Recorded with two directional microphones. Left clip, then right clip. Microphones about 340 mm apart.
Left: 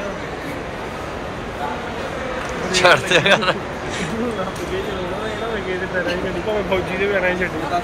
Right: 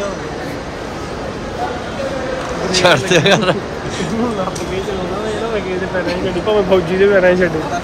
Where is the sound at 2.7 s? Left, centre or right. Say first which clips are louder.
Right 2 dB; centre.